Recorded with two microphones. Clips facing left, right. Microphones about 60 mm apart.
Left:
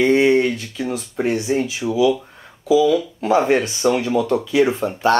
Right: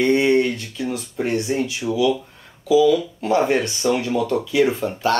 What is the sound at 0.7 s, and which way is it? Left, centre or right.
Speech, left.